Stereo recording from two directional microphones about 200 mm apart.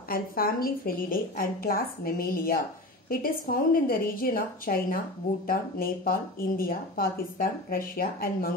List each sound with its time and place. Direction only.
0.1 s a woman's voice: 45° left (ahead or behind)